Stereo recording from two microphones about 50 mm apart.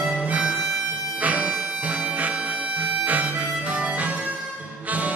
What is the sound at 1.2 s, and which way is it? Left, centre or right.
Music, right.